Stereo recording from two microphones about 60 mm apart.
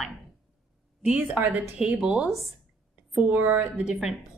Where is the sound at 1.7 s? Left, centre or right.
Centre.